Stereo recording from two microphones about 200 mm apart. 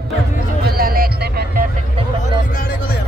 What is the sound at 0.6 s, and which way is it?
Music, 50° right (ahead or behind).